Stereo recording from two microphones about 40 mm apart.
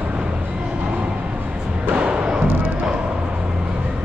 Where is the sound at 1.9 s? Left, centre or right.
Right.